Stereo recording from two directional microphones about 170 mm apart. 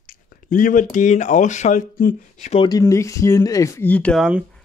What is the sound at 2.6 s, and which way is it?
Speech, 20° left (ahead or behind).